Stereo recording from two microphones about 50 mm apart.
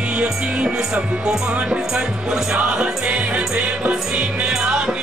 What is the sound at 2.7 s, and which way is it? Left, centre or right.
Music, centre.